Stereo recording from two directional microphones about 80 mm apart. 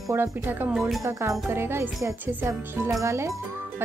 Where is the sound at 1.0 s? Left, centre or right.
Right.